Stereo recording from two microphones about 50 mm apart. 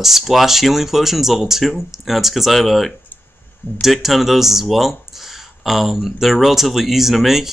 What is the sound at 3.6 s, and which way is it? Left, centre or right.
Speech, left.